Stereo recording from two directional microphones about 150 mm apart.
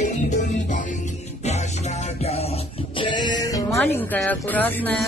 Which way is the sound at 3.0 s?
30° left (ahead or behind).